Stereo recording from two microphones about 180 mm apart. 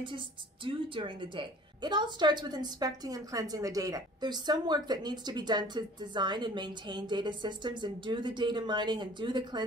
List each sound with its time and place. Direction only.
0.7 s a woman's voice: 25° right (ahead or behind)